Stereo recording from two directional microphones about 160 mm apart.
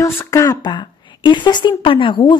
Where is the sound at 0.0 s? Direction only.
20° left (ahead or behind).